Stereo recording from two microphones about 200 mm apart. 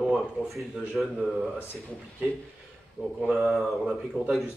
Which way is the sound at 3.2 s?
Centre (ahead or behind).